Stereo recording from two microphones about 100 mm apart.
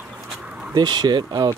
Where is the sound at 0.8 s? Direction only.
45° right (ahead or behind).